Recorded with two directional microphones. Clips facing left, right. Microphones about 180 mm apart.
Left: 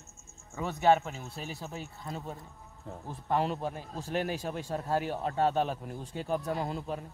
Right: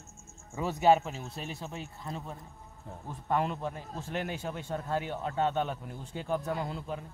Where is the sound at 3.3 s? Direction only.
30° left (ahead or behind).